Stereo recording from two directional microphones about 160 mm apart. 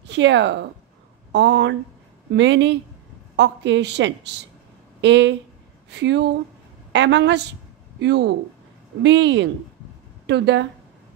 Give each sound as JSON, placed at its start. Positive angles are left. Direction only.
{"t": 0.1, "sound": "a woman's voice", "side_deg": -90}